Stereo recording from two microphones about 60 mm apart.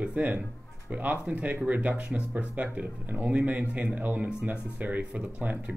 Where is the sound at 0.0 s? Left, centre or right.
Right.